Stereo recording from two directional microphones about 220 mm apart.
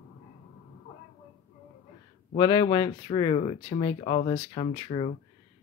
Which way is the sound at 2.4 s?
20° left (ahead or behind).